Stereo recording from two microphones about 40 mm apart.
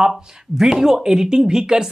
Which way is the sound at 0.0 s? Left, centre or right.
Centre.